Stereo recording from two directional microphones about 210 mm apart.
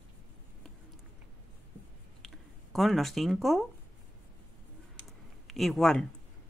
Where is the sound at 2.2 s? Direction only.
Centre (ahead or behind).